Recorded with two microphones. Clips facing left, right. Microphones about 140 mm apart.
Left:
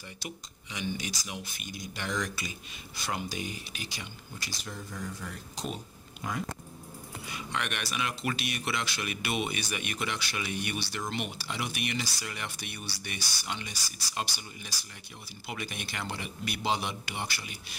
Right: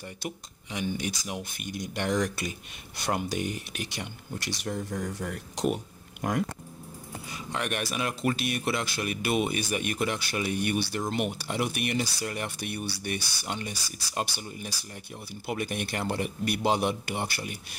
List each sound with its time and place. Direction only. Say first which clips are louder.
0.2 s speech: right 5 dB; 55° right (ahead or behind)